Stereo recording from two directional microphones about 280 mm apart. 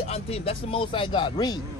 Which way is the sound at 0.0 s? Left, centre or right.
Left.